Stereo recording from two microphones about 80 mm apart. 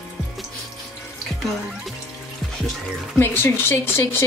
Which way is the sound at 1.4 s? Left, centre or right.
Centre.